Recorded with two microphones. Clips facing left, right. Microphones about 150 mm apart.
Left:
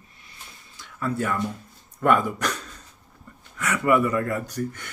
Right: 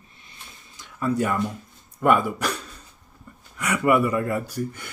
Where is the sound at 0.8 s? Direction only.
15° right (ahead or behind).